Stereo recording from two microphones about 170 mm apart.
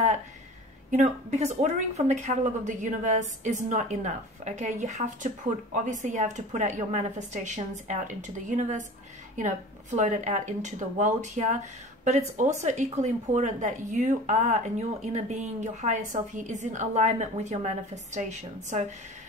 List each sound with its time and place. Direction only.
0.9 s speech: 45° right (ahead or behind)